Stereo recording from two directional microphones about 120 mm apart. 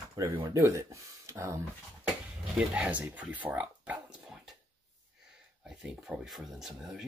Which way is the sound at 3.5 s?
10° right (ahead or behind).